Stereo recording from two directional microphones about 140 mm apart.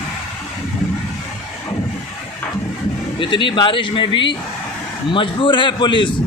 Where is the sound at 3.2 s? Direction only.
35° left (ahead or behind).